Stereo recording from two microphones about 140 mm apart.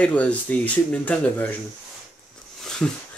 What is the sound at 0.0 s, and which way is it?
Speech, 10° left (ahead or behind).